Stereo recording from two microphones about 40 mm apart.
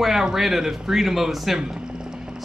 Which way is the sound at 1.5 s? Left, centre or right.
Centre.